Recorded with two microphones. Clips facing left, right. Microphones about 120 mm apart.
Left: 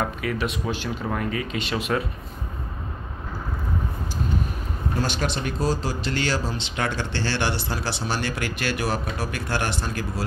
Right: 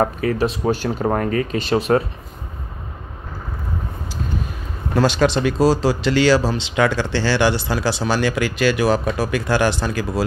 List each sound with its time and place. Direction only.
0.0 s speech: 40° right (ahead or behind)
4.9 s speech: 90° right